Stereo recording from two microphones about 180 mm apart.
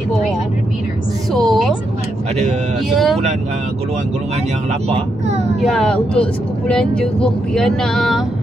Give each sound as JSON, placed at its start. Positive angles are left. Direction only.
{"t": 1.3, "sound": "music", "side_deg": 0}
{"t": 4.8, "sound": "speech", "side_deg": -35}
{"t": 5.7, "sound": "female singing", "side_deg": 5}